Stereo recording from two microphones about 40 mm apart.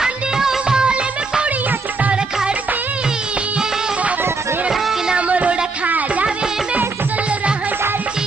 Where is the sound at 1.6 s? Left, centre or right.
Right.